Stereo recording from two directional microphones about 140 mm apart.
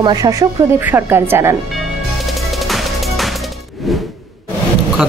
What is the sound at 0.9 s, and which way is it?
Speech, 15° right (ahead or behind).